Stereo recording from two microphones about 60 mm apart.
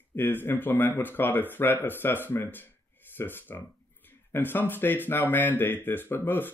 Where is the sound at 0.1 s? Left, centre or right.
Left.